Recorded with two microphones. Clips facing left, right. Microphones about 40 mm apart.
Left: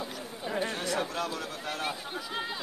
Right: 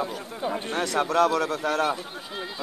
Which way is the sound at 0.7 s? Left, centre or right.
Right.